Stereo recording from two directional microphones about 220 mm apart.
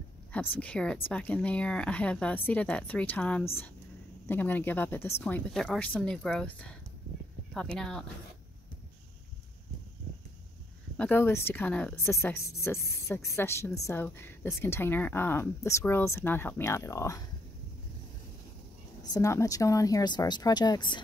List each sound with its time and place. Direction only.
0.3 s a woman's voice: 5° left (ahead or behind)
11.0 s a woman's voice: 10° left (ahead or behind)
19.1 s a woman's voice: 15° left (ahead or behind)